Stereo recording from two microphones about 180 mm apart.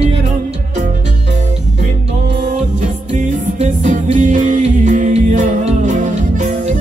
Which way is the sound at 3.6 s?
40° right (ahead or behind).